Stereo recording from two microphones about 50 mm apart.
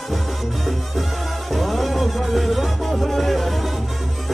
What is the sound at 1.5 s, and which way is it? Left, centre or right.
Music, centre.